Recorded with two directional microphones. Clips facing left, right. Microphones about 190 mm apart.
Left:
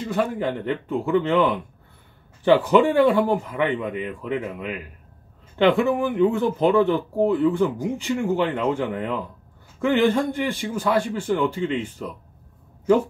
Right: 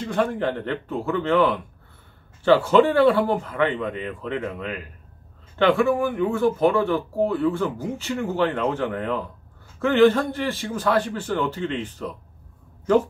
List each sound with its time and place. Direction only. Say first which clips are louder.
0.0 s speech: even; 5° left (ahead or behind)